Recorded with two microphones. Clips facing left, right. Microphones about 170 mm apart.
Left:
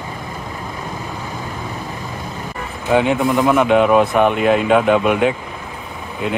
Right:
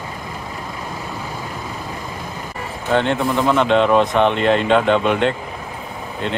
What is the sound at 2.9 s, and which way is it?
Speech, 10° left (ahead or behind).